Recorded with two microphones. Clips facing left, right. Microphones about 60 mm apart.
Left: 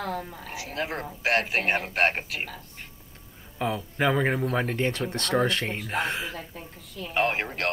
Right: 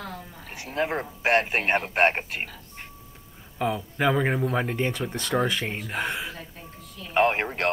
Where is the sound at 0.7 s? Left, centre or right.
Right.